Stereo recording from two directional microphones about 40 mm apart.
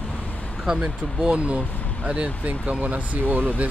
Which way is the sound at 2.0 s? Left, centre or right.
Right.